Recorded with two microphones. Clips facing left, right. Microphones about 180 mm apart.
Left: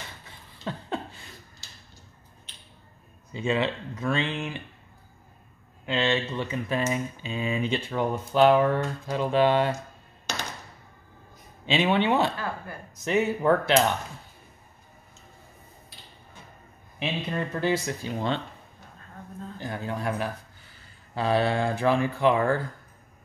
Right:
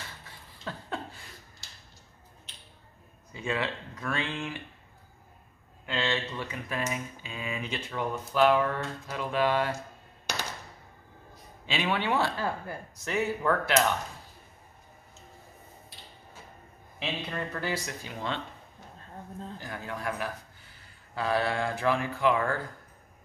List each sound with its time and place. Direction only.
0.7 s a sound: 20° left (ahead or behind)
3.3 s speech: 20° left (ahead or behind)
5.9 s speech: 20° left (ahead or behind)
11.6 s speech: 25° left (ahead or behind)
17.0 s speech: 20° left (ahead or behind)
19.6 s speech: 30° left (ahead or behind)